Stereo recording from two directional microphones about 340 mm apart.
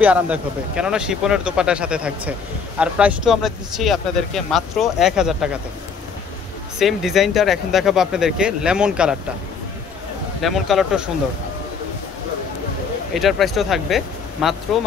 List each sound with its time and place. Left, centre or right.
0.0 s speech: centre
6.8 s speech: centre
10.4 s speech: centre
13.1 s speech: centre